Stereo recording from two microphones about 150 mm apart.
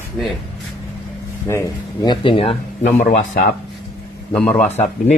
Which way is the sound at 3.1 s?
90° left.